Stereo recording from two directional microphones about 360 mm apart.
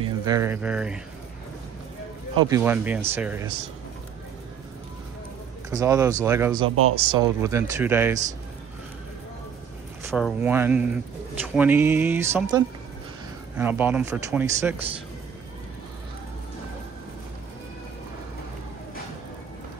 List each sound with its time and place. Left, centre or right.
0.0 s speech: centre
2.3 s speech: centre
5.7 s speech: centre
6.7 s speech: right
7.1 s speech: centre
10.1 s speech: centre